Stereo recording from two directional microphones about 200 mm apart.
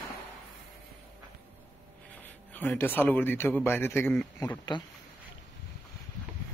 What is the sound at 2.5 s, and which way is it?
Speech, 10° left (ahead or behind).